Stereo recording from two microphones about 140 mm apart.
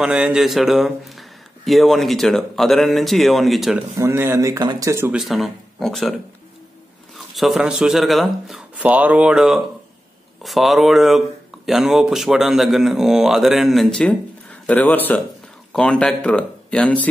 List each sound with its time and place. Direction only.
0.0 s speech: 5° right (ahead or behind)
4.0 s speech: 15° right (ahead or behind)
5.1 s speech: centre (ahead or behind)
7.3 s speech: centre (ahead or behind)